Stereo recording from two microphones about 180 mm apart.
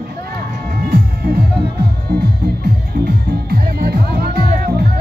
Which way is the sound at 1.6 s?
60° right (ahead or behind).